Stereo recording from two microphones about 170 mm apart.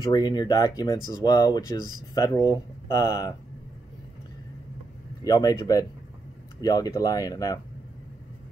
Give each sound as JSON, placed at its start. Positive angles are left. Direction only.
{"t": 0.0, "sound": "speech", "side_deg": 25}
{"t": 5.2, "sound": "speech", "side_deg": 20}